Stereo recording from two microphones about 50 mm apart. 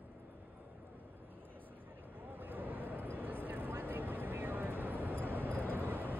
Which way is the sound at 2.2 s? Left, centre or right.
Right.